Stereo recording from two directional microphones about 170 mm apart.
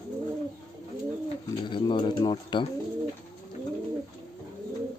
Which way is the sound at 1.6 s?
25° left (ahead or behind).